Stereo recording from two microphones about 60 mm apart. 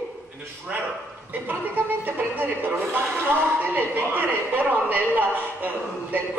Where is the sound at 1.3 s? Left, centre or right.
Right.